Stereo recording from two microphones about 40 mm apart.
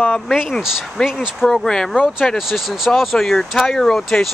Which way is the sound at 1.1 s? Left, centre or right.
Centre.